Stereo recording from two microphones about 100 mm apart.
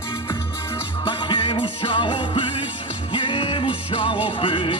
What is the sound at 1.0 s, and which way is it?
Music, 55° left (ahead or behind).